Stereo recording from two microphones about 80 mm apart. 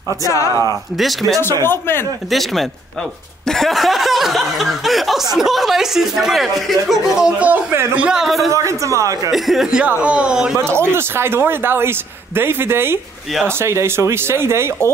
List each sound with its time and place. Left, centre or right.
0.3 s speech: left
0.9 s speech: centre
1.6 s speech: left
2.3 s speech: centre
7.9 s a man's voice: centre
8.5 s speech: right
9.3 s a man's voice: centre
10.6 s speech: right